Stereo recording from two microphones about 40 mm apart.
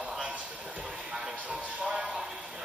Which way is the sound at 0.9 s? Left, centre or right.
Centre.